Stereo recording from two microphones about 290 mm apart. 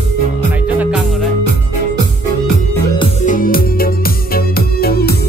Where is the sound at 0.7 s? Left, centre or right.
Centre.